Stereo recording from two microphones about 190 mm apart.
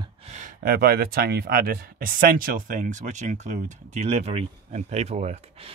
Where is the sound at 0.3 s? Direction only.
40° right (ahead or behind).